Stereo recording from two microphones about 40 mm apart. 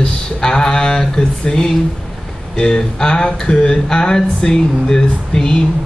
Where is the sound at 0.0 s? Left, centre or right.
Centre.